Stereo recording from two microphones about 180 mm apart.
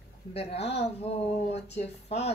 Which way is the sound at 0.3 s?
35° left (ahead or behind).